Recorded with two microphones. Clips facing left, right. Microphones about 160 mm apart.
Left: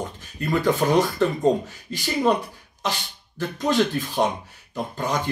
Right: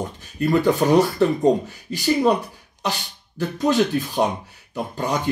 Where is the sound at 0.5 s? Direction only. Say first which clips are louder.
Right 3 dB; 10° right (ahead or behind).